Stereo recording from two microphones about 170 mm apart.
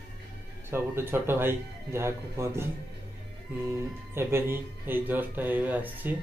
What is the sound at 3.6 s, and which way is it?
Speech, 15° right (ahead or behind).